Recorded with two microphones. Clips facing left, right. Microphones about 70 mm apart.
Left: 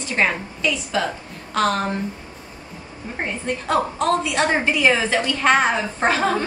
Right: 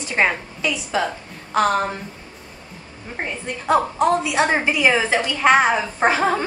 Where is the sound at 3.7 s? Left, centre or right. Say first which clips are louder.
Right 3 dB; centre.